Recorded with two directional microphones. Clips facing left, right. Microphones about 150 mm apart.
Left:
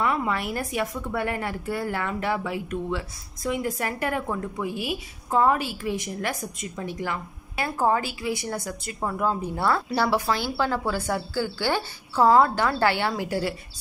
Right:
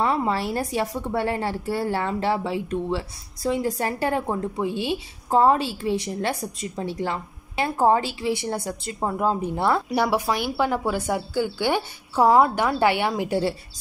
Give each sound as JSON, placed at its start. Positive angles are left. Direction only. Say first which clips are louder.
{"t": 0.0, "sound": "a woman's voice", "louder": "right 3 dB", "side_deg": -30}